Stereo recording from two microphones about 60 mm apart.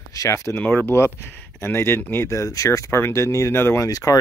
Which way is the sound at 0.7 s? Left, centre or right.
Left.